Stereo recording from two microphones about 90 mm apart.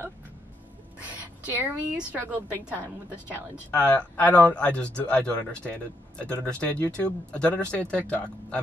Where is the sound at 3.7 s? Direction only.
10° left (ahead or behind).